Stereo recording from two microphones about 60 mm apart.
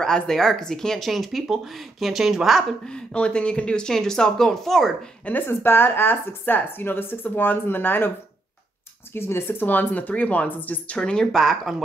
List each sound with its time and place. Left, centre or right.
0.0 s speech: centre
2.8 s speech: centre
5.5 s speech: left
9.1 s speech: left
11.0 s speech: centre